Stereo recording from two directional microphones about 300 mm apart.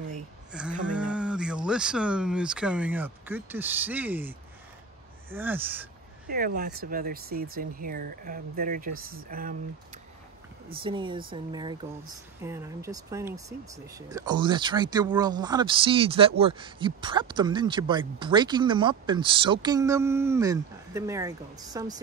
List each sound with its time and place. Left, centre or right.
0.5 s a sound: centre
0.9 s speech: centre
6.2 s speech: right
10.8 s speech: centre